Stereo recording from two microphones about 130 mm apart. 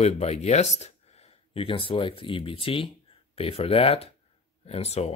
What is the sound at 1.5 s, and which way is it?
Speech, 45° left (ahead or behind).